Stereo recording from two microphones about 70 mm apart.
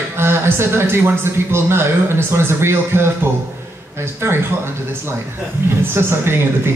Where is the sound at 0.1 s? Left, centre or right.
Right.